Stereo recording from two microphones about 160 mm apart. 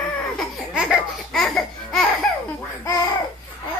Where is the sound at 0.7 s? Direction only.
5° right (ahead or behind).